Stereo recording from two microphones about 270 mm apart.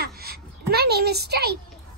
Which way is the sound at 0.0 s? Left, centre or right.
Right.